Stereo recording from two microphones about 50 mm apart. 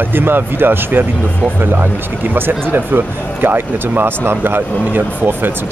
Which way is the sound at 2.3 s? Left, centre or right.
Right.